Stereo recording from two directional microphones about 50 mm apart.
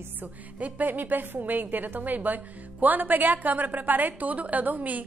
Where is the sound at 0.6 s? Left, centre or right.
Right.